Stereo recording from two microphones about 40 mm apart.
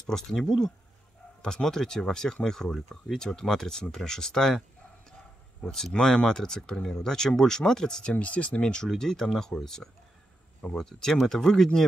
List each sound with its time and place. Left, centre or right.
0.1 s speech: centre
0.5 s speech: centre
1.4 s speech: centre
8.1 s speech: left; by 11.8 s centre